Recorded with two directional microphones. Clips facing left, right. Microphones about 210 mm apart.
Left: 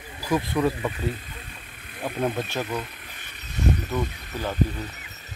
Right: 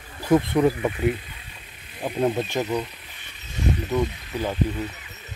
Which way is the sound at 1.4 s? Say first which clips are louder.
Left 3 dB; 50° left (ahead or behind).